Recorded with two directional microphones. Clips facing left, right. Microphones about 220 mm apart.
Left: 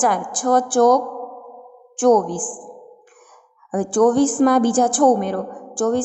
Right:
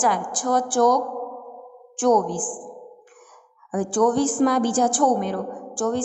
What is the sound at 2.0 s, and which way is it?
Speech, 50° left (ahead or behind).